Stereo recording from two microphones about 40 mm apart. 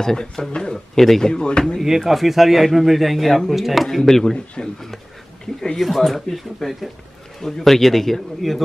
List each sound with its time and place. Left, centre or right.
0.0 s speech: centre
0.9 s a man's voice: centre
1.3 s speech: left
1.8 s a man's voice: centre
5.8 s a man's voice: centre